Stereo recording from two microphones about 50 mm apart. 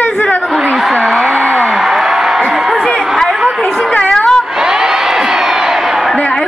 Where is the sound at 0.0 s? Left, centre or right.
Left.